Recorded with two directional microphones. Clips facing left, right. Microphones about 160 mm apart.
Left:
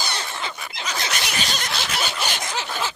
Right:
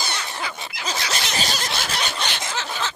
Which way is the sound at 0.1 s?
25° left (ahead or behind).